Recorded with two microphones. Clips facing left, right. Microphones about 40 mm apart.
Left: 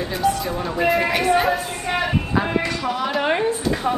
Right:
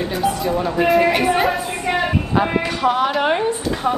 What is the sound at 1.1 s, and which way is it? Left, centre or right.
Speech, centre.